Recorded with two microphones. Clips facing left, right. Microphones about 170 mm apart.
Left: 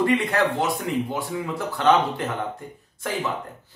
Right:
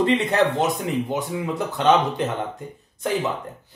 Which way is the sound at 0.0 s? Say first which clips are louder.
Right 2 dB; 20° right (ahead or behind).